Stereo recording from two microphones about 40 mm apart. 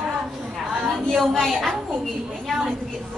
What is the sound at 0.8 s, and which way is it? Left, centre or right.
Speech, centre.